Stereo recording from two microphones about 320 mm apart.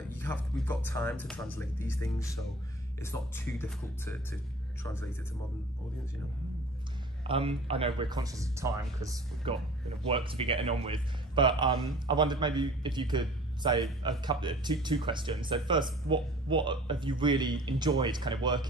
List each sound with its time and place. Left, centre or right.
0.1 s speech: centre
7.2 s speech: centre